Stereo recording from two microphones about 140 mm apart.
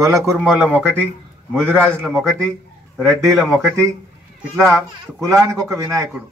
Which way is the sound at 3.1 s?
Centre (ahead or behind).